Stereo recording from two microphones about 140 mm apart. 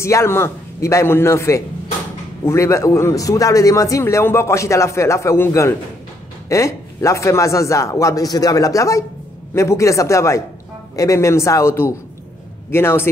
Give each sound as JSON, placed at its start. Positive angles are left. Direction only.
{"t": 0.0, "sound": "a man's voice", "side_deg": 20}